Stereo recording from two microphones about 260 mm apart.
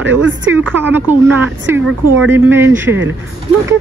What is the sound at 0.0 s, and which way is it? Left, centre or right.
Speech, right.